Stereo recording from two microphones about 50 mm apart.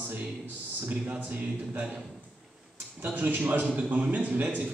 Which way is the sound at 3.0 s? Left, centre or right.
Right.